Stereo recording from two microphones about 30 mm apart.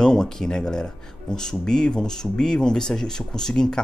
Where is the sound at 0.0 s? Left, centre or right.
Left.